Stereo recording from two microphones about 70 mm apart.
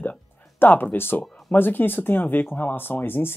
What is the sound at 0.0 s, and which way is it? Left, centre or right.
Music, left.